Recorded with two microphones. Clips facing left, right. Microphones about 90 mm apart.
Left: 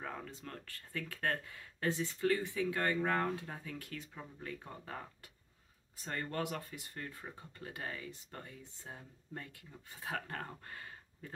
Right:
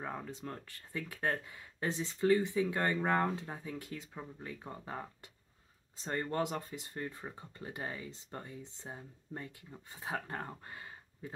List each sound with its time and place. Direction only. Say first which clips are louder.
0.0 s speech: right 3 dB; 20° right (ahead or behind)